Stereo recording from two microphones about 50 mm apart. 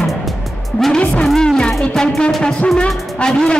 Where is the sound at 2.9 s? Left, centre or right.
Centre.